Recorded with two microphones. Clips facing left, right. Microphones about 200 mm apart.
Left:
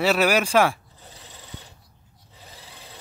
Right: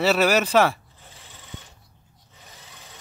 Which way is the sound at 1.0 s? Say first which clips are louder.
Left 3 dB; 40° left (ahead or behind).